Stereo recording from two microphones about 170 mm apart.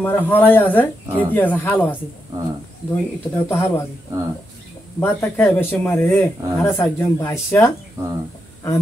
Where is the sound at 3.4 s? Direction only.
15° left (ahead or behind).